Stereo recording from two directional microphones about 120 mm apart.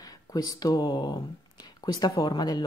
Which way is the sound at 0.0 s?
30° left (ahead or behind).